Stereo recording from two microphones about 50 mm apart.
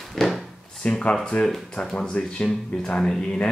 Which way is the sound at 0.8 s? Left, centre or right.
Left.